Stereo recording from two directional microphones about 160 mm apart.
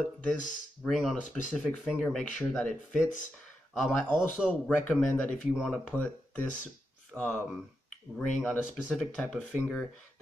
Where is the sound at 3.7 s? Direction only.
Centre (ahead or behind).